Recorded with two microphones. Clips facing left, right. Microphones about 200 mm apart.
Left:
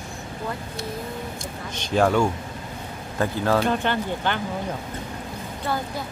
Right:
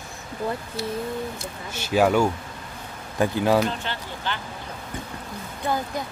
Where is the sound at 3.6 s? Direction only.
55° left (ahead or behind).